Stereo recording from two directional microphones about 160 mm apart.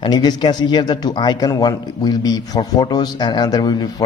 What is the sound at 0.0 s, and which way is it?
Speech, 25° left (ahead or behind).